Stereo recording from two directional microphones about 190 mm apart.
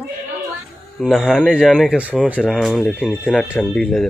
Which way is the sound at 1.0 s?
Centre (ahead or behind).